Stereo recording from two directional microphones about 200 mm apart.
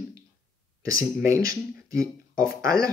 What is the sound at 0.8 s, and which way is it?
Speech, 15° right (ahead or behind).